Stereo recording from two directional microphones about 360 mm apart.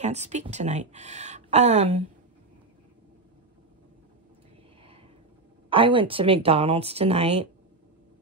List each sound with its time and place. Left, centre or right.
0.0 s speech: centre
5.7 s speech: centre